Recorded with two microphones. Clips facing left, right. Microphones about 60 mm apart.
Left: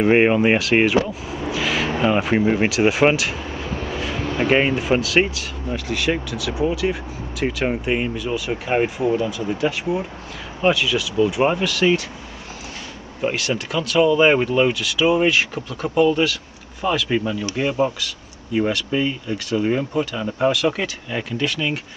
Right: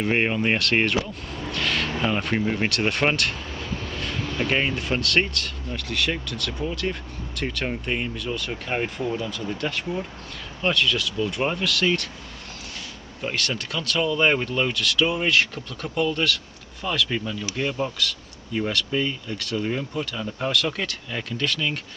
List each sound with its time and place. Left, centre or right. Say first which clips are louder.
0.0 s speech: left 8 dB; centre
1.3 s a sound: left 3 dB; centre
3.9 s speech: left 6 dB; centre
7.4 s speech: left 7 dB; centre
13.2 s speech: left 6 dB; centre
17.9 s a sound: right 2 dB; centre
18.7 s speech: left 4 dB; centre